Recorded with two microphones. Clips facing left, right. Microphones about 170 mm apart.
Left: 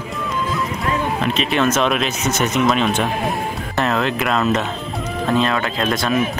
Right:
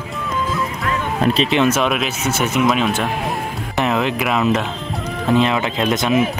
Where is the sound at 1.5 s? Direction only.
15° right (ahead or behind).